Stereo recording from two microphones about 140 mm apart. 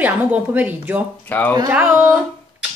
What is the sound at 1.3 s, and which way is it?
Speech, 10° left (ahead or behind).